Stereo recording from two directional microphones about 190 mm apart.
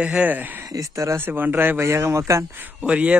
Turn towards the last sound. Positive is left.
turn(degrees=-5)  # may be behind; listen again after turning